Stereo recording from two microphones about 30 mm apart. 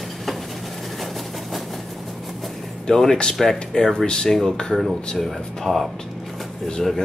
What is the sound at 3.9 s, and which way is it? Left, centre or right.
Speech, left.